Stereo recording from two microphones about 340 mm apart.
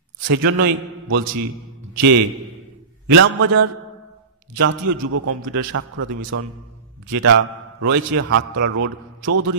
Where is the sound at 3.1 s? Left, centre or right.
Right.